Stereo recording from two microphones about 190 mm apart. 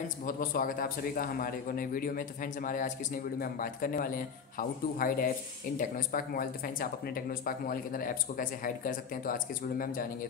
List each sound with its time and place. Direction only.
0.2 s a man's voice: 45° left (ahead or behind)